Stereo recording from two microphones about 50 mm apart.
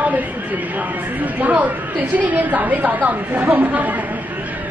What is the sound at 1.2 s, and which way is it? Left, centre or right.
A woman's voice, right.